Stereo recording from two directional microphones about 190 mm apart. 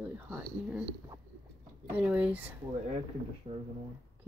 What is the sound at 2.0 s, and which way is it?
Speech, 5° right (ahead or behind).